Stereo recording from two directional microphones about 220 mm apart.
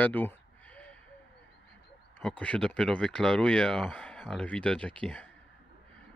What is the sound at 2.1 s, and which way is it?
Speech, 5° left (ahead or behind).